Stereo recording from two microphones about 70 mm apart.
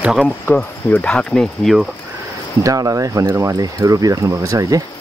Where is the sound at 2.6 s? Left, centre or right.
Right.